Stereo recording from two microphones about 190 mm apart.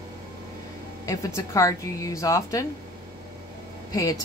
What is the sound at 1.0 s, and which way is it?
Speech, 15° left (ahead or behind).